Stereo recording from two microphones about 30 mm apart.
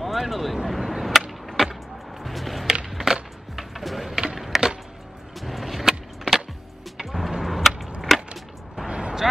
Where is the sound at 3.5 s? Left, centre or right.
Centre.